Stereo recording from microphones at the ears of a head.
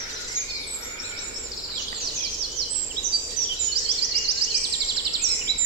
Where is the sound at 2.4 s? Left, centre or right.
Right.